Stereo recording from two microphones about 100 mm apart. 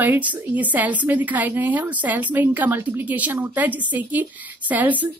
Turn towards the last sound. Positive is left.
turn(degrees=-15)  # may be behind; listen again after turning